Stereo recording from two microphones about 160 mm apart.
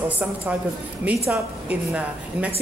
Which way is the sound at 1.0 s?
5° right (ahead or behind).